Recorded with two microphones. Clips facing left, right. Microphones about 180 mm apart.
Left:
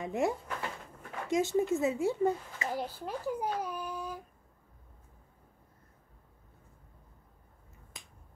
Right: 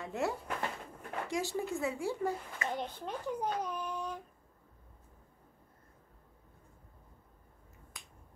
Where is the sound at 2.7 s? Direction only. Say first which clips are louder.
Left 3 dB; 5° left (ahead or behind).